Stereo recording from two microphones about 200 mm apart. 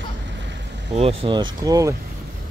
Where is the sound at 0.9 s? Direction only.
30° right (ahead or behind).